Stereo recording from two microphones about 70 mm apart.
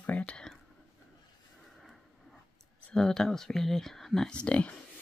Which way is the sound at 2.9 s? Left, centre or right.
Centre.